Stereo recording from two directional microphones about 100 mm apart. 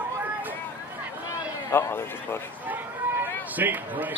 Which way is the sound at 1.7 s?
25° left (ahead or behind).